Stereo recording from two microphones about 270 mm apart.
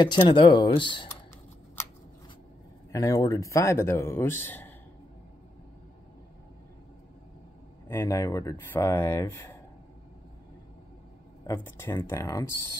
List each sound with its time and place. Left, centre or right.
0.0 s a man's voice: centre
2.9 s a man's voice: centre
7.9 s a man's voice: centre
11.4 s a man's voice: centre